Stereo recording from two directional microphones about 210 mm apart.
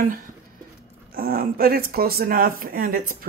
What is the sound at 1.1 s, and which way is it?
Speech, 45° right (ahead or behind).